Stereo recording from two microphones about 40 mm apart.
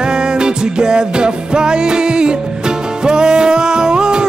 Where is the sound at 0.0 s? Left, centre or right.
Right.